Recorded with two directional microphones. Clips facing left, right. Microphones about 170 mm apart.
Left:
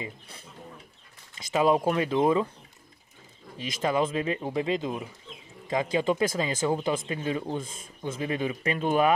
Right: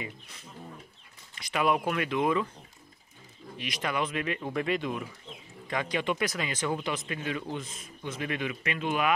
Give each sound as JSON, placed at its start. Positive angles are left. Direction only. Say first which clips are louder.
{"t": 1.5, "sound": "speech", "louder": "left 4 dB", "side_deg": 25}
{"t": 1.8, "sound": "speech", "louder": "left 4 dB", "side_deg": 35}
{"t": 3.5, "sound": "speech", "louder": "left 5 dB", "side_deg": 30}